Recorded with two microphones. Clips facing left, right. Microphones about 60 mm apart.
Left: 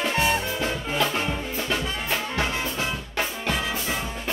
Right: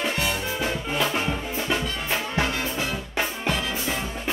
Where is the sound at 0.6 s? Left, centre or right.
Centre.